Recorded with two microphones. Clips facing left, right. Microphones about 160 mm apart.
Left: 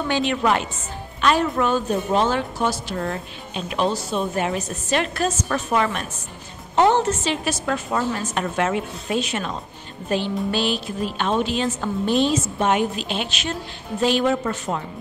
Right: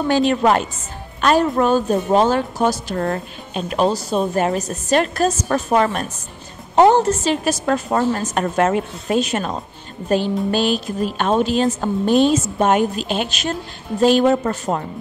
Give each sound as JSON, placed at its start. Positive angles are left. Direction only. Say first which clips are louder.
{"t": 0.1, "sound": "a woman's voice", "louder": "right 5 dB", "side_deg": -40}